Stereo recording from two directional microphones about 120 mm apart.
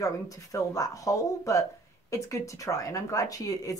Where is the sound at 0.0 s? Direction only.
30° left (ahead or behind).